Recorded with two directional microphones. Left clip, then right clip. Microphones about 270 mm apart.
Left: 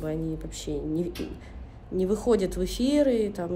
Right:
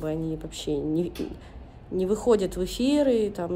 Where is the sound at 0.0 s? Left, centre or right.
Centre.